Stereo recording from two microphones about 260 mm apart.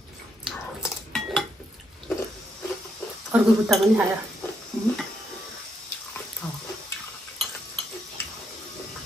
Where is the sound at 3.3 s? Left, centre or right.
Centre.